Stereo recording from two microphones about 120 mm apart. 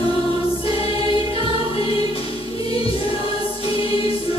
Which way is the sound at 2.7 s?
50° left (ahead or behind).